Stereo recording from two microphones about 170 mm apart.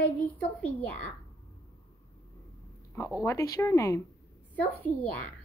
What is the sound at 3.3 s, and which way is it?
Speech, 15° left (ahead or behind).